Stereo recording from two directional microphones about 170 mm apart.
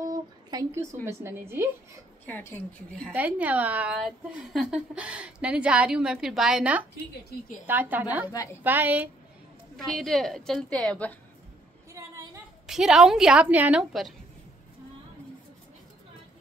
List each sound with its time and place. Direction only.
0.1 s a sound: 20° right (ahead or behind)
1.0 s a woman's voice: 15° right (ahead or behind)
3.1 s a woman's voice: 10° right (ahead or behind)
9.8 s a woman's voice: centre (ahead or behind)
11.9 s a sound: 15° right (ahead or behind)
12.6 s a woman's voice: 5° right (ahead or behind)